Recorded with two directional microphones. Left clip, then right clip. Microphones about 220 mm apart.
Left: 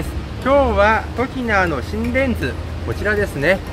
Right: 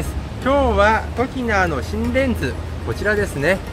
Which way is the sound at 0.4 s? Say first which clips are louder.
Left 2 dB; centre (ahead or behind).